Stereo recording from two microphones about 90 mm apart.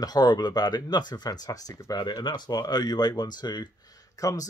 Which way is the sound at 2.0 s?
55° left (ahead or behind).